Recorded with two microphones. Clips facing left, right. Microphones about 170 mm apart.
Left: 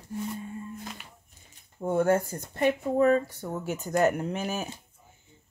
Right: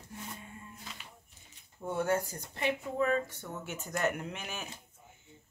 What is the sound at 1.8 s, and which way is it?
Speech, 50° left (ahead or behind).